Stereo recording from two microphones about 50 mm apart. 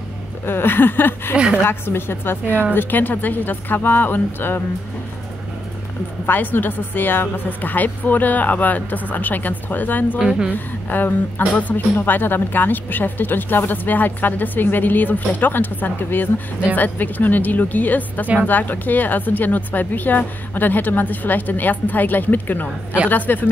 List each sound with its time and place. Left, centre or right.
0.5 s a woman's voice: left
1.3 s speech: right
1.6 s a woman's voice: left
6.2 s speech: left
10.1 s a woman's voice: centre
10.5 s speech: left
18.2 s speech: right
18.5 s speech: left